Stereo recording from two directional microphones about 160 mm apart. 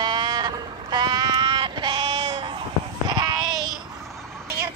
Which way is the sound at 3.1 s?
25° right (ahead or behind).